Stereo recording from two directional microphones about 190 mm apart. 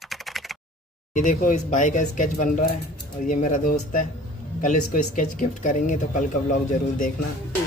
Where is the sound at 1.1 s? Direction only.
40° left (ahead or behind).